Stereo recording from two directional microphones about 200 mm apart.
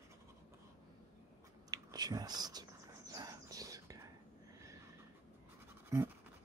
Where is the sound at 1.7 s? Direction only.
20° right (ahead or behind).